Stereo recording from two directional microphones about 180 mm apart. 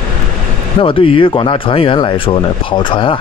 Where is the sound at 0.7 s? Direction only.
30° left (ahead or behind).